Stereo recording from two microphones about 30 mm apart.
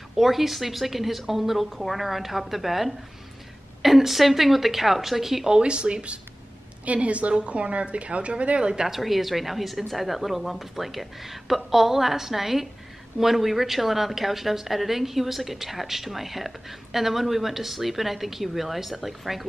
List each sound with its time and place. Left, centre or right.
0.1 s a woman's voice: centre
5.6 s a woman's voice: right
8.8 s a woman's voice: centre